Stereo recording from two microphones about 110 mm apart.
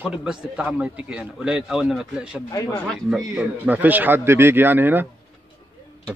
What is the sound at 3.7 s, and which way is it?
Speech, 15° right (ahead or behind).